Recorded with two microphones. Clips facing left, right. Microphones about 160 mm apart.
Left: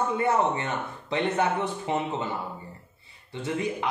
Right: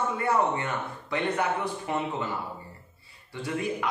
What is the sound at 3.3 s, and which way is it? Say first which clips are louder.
Speech: left 1 dB; 25° left (ahead or behind).